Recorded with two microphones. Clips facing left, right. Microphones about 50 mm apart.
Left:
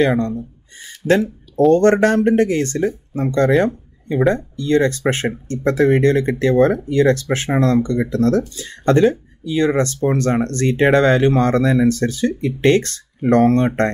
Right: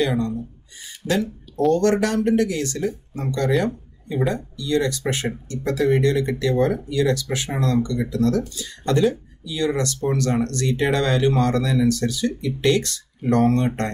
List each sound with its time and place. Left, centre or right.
0.0 s speech: left
0.7 s a sound: left
1.7 s speech: left